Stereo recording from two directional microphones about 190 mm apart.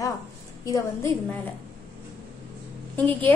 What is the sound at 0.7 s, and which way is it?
Speech, 15° left (ahead or behind).